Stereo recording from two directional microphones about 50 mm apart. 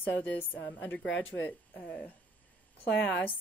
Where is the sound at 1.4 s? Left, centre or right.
Left.